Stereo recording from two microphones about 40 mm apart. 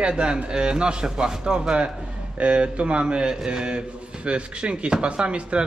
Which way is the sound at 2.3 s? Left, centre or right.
Right.